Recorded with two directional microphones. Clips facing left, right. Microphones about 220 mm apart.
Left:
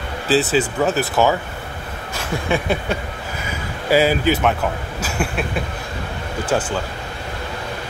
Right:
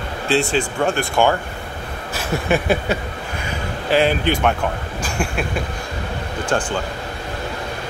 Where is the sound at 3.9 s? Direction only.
5° left (ahead or behind).